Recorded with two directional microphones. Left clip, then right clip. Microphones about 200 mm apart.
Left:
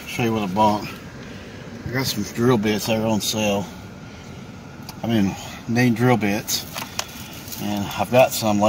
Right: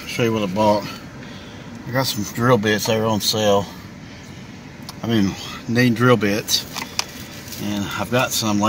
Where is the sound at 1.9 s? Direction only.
45° right (ahead or behind).